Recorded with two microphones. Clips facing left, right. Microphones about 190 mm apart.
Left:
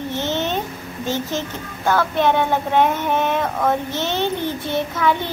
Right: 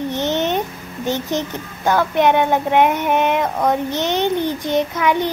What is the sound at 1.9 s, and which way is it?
A child's voice, 15° right (ahead or behind).